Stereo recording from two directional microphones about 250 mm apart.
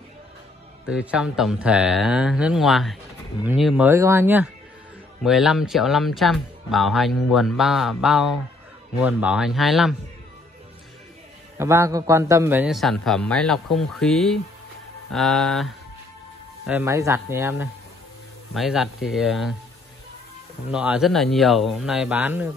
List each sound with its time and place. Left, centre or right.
0.8 s speech: centre
11.5 s speech: centre
20.7 s speech: centre